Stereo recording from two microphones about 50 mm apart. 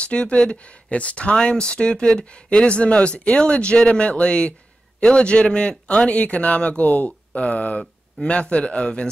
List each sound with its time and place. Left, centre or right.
0.0 s speech: left